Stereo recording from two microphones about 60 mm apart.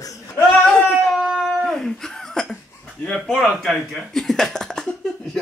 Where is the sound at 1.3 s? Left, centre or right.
Centre.